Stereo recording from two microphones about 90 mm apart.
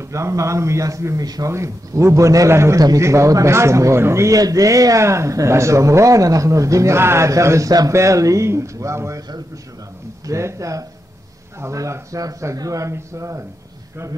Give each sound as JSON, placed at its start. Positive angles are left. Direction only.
{"t": 0.0, "sound": "a man's voice", "side_deg": -35}
{"t": 1.5, "sound": "a man's voice", "side_deg": -30}
{"t": 10.2, "sound": "a man's voice", "side_deg": -35}